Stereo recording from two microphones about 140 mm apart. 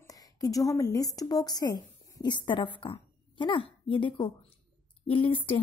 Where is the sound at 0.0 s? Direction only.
25° left (ahead or behind).